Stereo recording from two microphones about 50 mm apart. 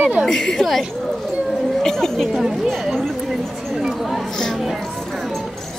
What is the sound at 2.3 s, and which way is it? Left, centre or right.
Speech, centre.